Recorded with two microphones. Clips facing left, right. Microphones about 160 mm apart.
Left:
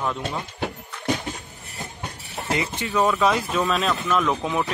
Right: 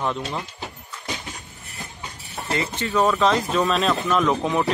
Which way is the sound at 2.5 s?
15° left (ahead or behind).